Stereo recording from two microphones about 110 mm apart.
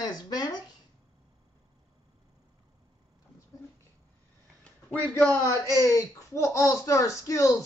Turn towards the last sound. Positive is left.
turn(degrees=30)  # may be behind; listen again after turning